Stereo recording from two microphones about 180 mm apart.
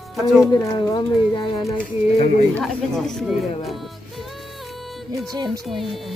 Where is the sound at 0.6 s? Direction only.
25° left (ahead or behind).